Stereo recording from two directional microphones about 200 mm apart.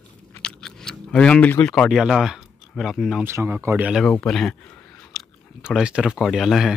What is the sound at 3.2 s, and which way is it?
Speech, 10° right (ahead or behind).